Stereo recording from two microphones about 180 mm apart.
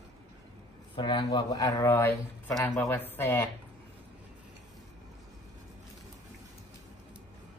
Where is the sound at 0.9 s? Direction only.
25° left (ahead or behind).